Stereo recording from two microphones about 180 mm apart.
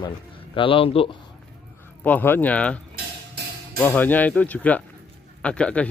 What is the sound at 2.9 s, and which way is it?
Music, 60° right (ahead or behind).